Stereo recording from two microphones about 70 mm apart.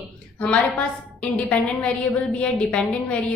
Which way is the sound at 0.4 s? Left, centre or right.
Centre.